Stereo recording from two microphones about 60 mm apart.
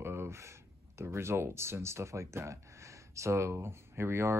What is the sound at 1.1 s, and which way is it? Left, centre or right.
Speech, right.